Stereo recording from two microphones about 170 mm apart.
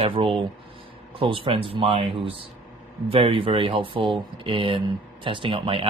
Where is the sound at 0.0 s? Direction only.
35° right (ahead or behind).